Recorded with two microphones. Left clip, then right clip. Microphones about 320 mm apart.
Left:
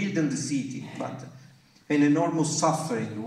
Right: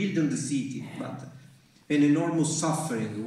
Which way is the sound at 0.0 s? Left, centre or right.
Centre.